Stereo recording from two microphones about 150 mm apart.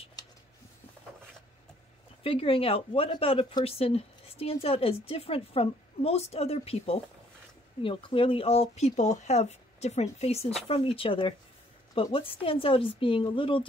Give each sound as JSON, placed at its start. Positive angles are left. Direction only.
{"t": 2.2, "sound": "speech", "side_deg": 40}